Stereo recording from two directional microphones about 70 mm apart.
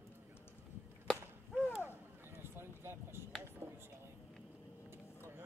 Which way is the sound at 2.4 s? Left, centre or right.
Right.